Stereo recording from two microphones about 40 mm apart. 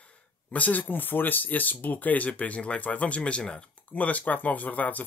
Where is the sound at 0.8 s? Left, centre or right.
Left.